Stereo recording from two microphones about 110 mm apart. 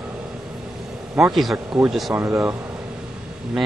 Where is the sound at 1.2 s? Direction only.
Centre (ahead or behind).